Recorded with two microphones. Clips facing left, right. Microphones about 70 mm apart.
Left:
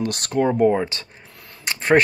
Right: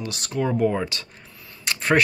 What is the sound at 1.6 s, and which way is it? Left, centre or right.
Speech, left.